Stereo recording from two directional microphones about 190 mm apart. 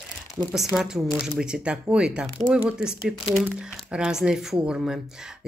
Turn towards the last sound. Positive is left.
turn(degrees=-5)  # may be behind; listen again after turning